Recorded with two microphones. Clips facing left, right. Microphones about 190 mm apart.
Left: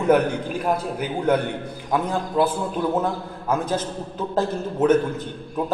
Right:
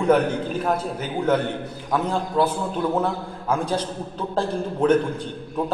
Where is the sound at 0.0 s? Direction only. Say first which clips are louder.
Even; 10° left (ahead or behind).